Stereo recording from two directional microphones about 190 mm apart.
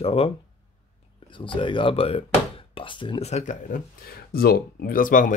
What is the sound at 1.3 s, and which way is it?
Speech, 25° left (ahead or behind).